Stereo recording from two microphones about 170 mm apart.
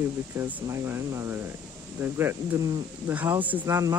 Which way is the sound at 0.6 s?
15° right (ahead or behind).